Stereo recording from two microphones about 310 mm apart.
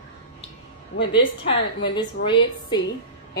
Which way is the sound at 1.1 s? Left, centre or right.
Centre.